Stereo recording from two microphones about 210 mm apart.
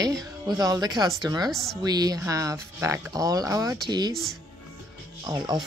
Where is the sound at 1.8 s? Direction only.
20° right (ahead or behind).